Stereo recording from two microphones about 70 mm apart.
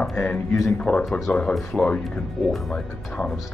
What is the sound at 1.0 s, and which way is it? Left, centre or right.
Speech, centre.